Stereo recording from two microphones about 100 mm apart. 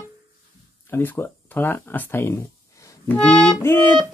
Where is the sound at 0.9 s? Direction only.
20° left (ahead or behind).